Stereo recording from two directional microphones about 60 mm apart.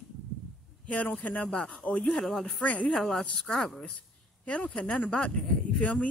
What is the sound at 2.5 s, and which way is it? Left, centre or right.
Speech, left.